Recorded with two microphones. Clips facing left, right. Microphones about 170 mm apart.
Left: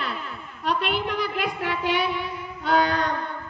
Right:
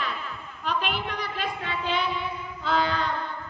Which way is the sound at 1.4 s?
75° left (ahead or behind).